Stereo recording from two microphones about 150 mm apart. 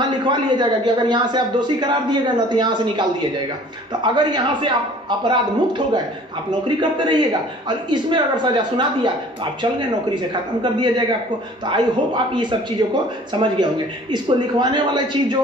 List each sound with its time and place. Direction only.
0.2 s a man's voice: 30° right (ahead or behind)
6.8 s a man's voice: 30° right (ahead or behind)
10.6 s a man's voice: 30° right (ahead or behind)